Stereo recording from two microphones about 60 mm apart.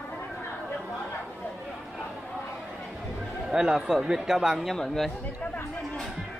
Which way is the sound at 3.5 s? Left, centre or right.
Centre.